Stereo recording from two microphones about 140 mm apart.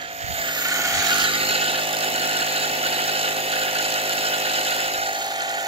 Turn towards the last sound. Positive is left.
turn(degrees=-30)  # may be behind; listen again after turning